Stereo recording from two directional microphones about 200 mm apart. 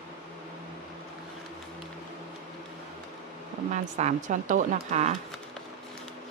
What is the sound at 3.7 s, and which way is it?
A woman's voice, 35° right (ahead or behind).